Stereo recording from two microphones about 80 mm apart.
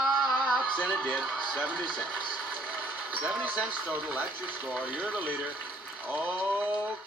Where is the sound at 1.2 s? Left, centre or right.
Centre.